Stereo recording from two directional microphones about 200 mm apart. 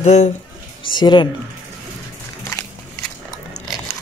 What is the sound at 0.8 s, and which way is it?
Speech, 25° left (ahead or behind).